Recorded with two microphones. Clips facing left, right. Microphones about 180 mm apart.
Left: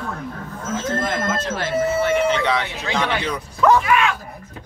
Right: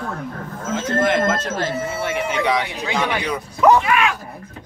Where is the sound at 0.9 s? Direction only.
70° right (ahead or behind).